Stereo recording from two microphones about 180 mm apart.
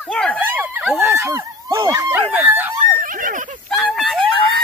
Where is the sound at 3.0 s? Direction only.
50° right (ahead or behind).